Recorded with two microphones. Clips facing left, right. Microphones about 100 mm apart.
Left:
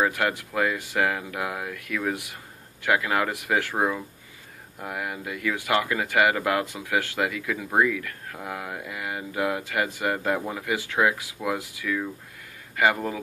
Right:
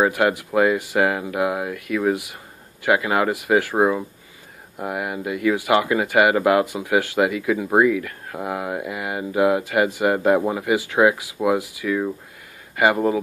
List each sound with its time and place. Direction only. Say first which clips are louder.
0.0 s speech: right 6 dB; 15° right (ahead or behind)
10.1 s speech: right 9 dB; 30° right (ahead or behind)